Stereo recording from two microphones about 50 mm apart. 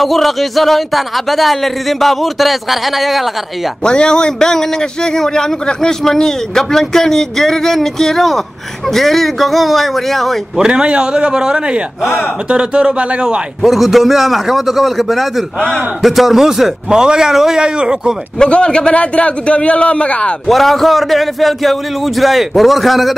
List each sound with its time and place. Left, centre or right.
0.0 s speech: centre
3.8 s a man's voice: centre
10.6 s a man's voice: centre
13.6 s a man's voice: centre
18.4 s a man's voice: centre
20.4 s speech: centre